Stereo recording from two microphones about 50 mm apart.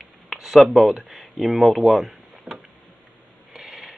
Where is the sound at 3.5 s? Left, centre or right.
Centre.